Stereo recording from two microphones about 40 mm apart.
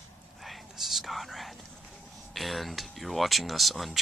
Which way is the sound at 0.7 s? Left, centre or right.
Centre.